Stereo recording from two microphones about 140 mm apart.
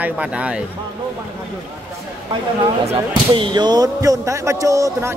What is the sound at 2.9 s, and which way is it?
A man's voice, 35° right (ahead or behind).